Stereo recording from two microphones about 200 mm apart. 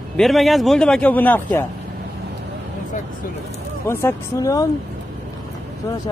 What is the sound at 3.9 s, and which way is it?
Speech, 15° left (ahead or behind).